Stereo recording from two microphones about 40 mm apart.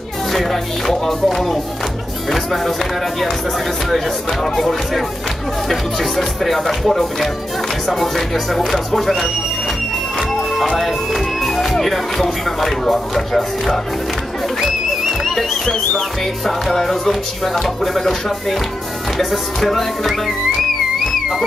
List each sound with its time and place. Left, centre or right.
0.3 s speech: centre
3.9 s speech: centre
10.8 s speech: centre
15.2 s speech: centre
16.4 s music: centre